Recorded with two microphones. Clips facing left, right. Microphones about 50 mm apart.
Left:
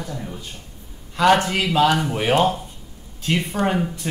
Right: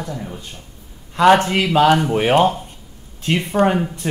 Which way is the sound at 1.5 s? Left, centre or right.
Right.